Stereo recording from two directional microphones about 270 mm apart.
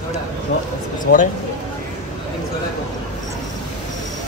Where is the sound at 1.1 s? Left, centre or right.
Left.